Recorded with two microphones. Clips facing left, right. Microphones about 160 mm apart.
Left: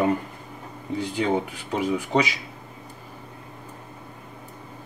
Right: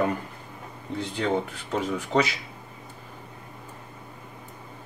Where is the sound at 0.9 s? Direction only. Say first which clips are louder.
Left 2 dB; 10° left (ahead or behind).